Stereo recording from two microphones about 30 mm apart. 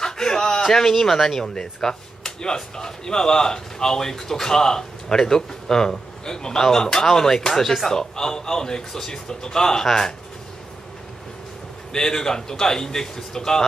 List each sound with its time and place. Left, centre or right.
0.0 s a sound: centre
0.7 s speech: centre
1.5 s speech: left
11.9 s speech: centre